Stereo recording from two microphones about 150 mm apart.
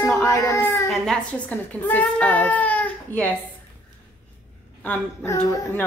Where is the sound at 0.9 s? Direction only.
5° left (ahead or behind).